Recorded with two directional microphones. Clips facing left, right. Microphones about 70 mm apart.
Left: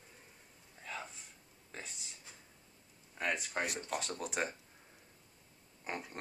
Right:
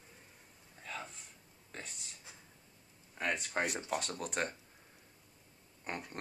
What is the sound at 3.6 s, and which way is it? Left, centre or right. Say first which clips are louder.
Speech: right 2 dB; right.